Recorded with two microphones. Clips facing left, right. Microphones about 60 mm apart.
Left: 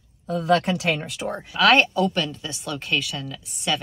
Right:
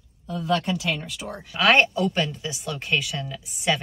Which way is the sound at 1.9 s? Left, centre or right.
Centre.